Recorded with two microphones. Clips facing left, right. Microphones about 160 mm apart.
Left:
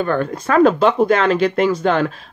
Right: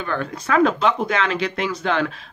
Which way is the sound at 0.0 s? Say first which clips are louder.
Left 7 dB; 45° left (ahead or behind).